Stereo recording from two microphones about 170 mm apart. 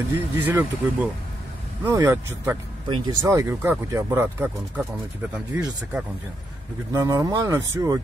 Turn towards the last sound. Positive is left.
turn(degrees=-20)  # may be behind; listen again after turning